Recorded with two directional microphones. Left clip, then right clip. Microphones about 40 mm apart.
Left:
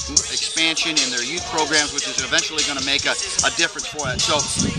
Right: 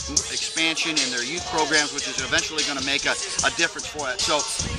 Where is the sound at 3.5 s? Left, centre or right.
Centre.